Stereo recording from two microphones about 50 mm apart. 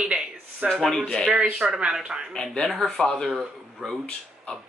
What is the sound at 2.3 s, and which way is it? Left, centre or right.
Speech, centre.